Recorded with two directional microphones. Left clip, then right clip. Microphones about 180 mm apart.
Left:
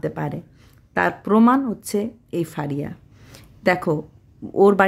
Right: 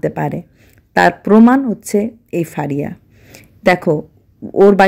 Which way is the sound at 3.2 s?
20° right (ahead or behind).